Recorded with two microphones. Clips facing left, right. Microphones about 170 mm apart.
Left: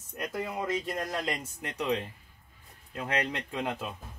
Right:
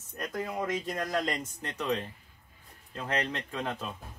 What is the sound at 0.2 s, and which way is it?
Speech, 5° left (ahead or behind).